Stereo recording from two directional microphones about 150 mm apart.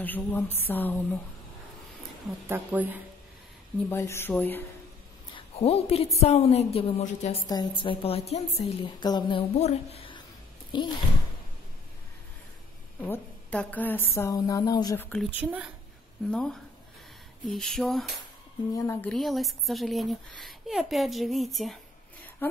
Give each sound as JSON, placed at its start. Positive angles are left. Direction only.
{"t": 0.0, "sound": "a woman's voice", "side_deg": 10}
{"t": 2.4, "sound": "speech", "side_deg": -10}
{"t": 3.9, "sound": "a woman's voice", "side_deg": 15}
{"t": 5.3, "sound": "a sound", "side_deg": 40}
{"t": 6.1, "sound": "a woman's voice", "side_deg": 45}
{"t": 7.4, "sound": "a woman's voice", "side_deg": 30}
{"t": 9.0, "sound": "speech", "side_deg": 30}
{"t": 9.6, "sound": "a woman's voice", "side_deg": 45}
{"t": 13.0, "sound": "a woman's voice", "side_deg": 10}
{"t": 15.0, "sound": "a woman's voice", "side_deg": 10}
{"t": 15.3, "sound": "speech", "side_deg": -10}
{"t": 16.3, "sound": "a woman's voice", "side_deg": 5}
{"t": 18.7, "sound": "speech", "side_deg": 20}
{"t": 19.0, "sound": "speech", "side_deg": 0}